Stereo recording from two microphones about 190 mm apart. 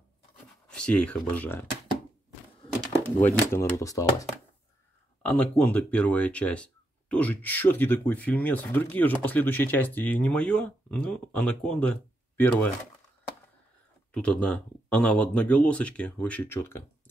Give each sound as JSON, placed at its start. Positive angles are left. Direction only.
{"t": 0.7, "sound": "speech", "side_deg": 5}
{"t": 3.3, "sound": "speech", "side_deg": 10}
{"t": 14.1, "sound": "speech", "side_deg": 5}